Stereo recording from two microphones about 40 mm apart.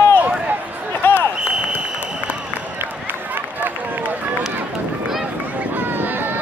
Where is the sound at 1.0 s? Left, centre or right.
Left.